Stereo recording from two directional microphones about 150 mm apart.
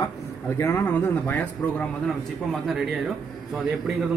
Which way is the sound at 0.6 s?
15° left (ahead or behind).